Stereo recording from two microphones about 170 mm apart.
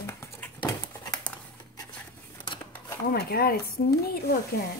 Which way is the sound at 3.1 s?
65° left (ahead or behind).